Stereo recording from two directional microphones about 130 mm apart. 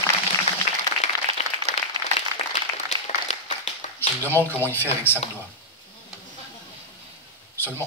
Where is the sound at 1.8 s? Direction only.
60° left (ahead or behind).